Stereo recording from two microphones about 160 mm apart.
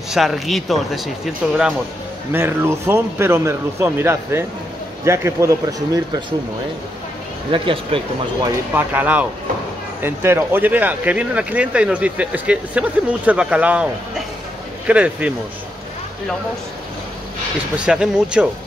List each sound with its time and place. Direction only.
0.1 s speech: centre (ahead or behind)
2.3 s speech: 15° right (ahead or behind)
7.5 s speech: 35° right (ahead or behind)
8.7 s speech: 10° right (ahead or behind)
17.7 s speech: 5° right (ahead or behind)